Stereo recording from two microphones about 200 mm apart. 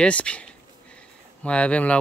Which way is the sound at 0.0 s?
5° left (ahead or behind).